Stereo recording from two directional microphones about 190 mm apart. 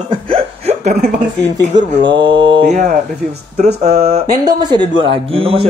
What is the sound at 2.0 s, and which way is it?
Speech, 25° right (ahead or behind).